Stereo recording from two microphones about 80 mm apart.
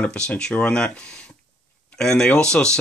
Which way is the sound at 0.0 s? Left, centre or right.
Centre.